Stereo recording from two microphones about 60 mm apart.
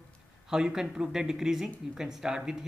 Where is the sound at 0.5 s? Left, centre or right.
Centre.